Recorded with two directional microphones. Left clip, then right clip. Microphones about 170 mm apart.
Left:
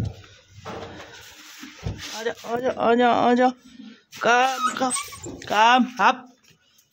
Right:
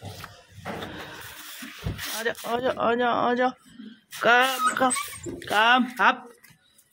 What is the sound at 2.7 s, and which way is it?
Speech, 30° left (ahead or behind).